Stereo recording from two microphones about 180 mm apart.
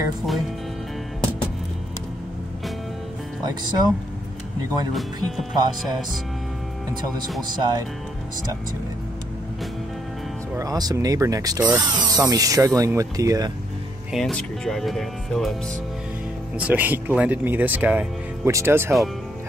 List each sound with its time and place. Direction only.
4.6 s speech: 20° right (ahead or behind)
4.9 s speech: centre (ahead or behind)
7.5 s speech: 25° right (ahead or behind)
10.5 s speech: 20° right (ahead or behind)
14.1 s speech: centre (ahead or behind)
16.5 s speech: 10° right (ahead or behind)